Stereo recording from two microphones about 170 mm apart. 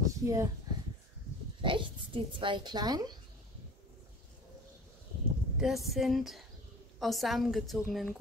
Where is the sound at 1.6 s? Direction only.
30° right (ahead or behind).